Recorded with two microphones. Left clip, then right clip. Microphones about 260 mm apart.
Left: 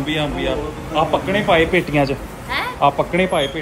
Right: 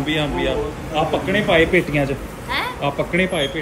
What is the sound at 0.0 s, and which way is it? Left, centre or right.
A man's voice, centre.